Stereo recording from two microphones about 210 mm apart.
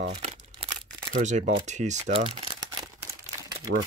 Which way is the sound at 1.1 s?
35° right (ahead or behind).